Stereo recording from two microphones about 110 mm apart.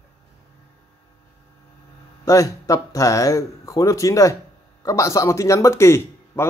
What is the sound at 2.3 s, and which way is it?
Speech, 30° left (ahead or behind).